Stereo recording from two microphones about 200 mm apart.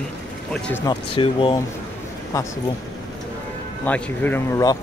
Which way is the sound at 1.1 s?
25° left (ahead or behind).